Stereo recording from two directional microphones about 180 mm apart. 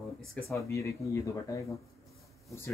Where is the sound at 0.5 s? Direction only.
15° left (ahead or behind).